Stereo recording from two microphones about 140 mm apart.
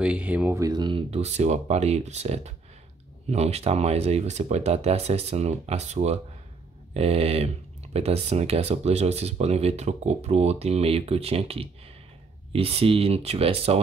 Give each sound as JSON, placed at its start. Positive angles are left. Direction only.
{"t": 0.0, "sound": "speech", "side_deg": -10}
{"t": 0.6, "sound": "speech", "side_deg": -30}
{"t": 1.1, "sound": "speech", "side_deg": -55}